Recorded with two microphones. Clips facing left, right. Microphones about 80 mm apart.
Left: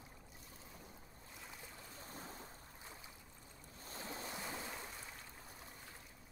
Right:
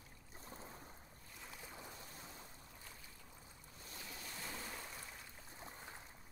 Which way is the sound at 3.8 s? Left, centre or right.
Left.